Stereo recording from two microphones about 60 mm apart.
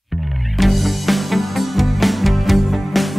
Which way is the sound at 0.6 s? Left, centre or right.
Centre.